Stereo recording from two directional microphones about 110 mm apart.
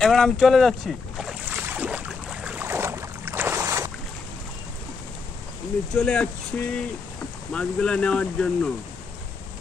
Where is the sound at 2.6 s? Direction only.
25° right (ahead or behind).